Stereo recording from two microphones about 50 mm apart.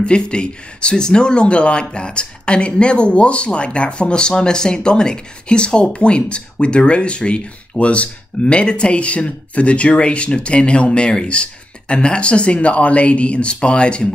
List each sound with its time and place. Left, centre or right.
0.0 s speech: centre